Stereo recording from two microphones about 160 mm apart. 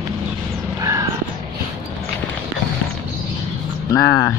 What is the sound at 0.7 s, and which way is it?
Crow, 20° right (ahead or behind).